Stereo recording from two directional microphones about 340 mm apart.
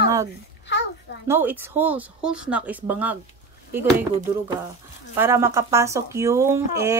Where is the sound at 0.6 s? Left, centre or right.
Left.